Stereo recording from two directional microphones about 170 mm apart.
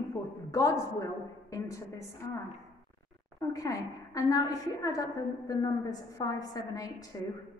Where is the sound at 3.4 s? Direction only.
20° left (ahead or behind).